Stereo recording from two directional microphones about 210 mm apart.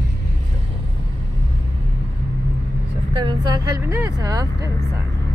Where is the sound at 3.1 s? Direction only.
25° right (ahead or behind).